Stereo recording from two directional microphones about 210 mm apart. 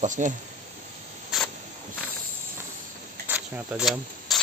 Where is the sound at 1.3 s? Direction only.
Centre (ahead or behind).